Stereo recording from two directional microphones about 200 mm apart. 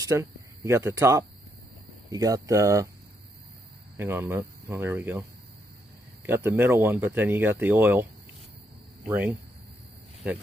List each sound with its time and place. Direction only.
0.0 s speech: 15° right (ahead or behind)
3.9 s speech: 10° right (ahead or behind)
6.2 s speech: 10° right (ahead or behind)